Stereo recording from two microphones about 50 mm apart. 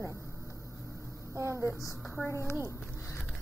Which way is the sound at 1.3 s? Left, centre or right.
Right.